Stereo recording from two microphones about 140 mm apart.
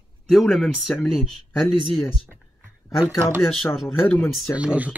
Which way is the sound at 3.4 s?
Centre (ahead or behind).